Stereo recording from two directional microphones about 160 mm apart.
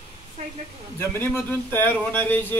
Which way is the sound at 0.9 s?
15° left (ahead or behind).